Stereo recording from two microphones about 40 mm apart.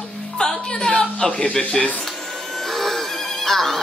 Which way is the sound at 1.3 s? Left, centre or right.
Left.